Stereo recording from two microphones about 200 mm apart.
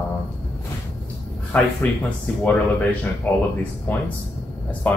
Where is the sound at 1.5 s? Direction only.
10° left (ahead or behind).